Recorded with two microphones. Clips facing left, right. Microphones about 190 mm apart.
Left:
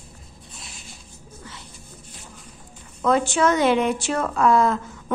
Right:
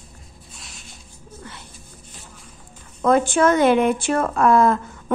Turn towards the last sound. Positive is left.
turn(degrees=-55)  # may be behind; listen again after turning